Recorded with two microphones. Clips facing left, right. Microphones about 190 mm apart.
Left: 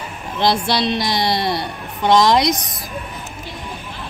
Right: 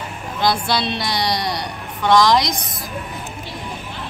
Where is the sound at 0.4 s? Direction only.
25° left (ahead or behind).